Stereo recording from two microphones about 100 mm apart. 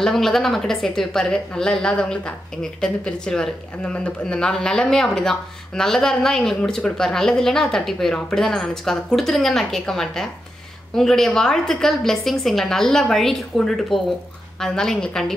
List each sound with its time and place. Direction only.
0.0 s speech: 5° left (ahead or behind)